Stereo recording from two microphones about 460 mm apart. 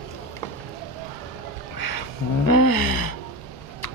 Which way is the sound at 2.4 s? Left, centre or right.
Left.